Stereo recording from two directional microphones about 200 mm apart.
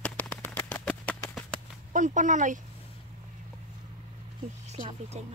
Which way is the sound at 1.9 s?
40° right (ahead or behind).